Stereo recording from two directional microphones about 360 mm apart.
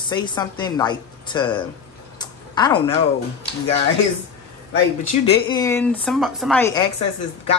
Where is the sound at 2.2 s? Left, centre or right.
Centre.